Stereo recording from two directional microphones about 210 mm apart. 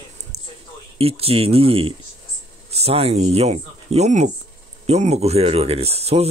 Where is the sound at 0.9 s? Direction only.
30° right (ahead or behind).